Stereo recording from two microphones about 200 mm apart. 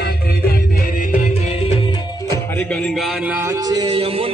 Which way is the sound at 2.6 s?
5° left (ahead or behind).